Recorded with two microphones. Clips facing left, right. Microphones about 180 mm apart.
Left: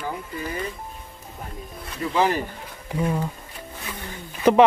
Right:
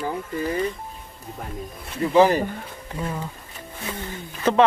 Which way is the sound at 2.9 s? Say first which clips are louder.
Left 5 dB; 15° left (ahead or behind).